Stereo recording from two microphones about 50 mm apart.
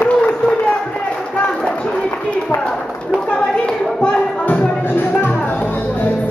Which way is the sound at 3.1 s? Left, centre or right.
Centre.